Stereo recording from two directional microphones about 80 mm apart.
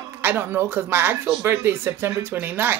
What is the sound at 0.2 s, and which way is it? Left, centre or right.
Speech, right.